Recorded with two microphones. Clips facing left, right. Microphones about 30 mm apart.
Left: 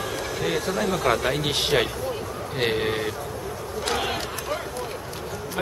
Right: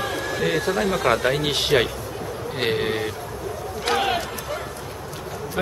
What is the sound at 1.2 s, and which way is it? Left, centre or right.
A man's voice, centre.